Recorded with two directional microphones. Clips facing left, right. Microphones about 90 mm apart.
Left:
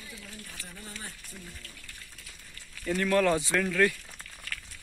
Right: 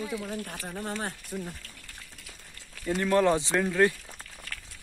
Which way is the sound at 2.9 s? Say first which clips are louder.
Right 2 dB; 20° right (ahead or behind).